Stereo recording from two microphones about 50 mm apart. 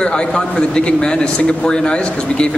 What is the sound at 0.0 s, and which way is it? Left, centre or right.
A man's voice, centre.